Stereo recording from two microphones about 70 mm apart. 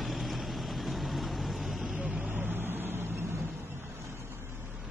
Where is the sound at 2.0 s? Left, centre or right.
Centre; by 3.5 s right.